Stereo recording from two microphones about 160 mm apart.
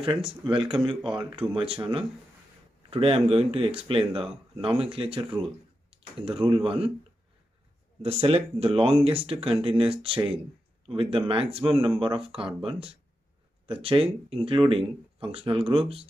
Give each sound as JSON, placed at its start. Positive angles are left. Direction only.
{"t": 0.5, "sound": "speech", "side_deg": -30}
{"t": 8.0, "sound": "speech", "side_deg": -40}